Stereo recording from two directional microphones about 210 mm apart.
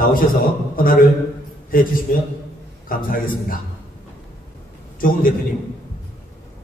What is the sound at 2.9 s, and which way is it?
Speech, 45° left (ahead or behind).